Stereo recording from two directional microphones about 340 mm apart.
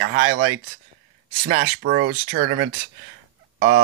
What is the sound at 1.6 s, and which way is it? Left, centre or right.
Speech, right.